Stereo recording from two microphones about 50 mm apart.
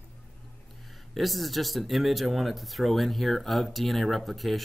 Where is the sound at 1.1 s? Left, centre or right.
Centre.